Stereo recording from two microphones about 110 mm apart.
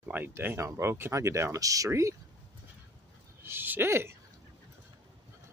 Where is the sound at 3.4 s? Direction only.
20° right (ahead or behind).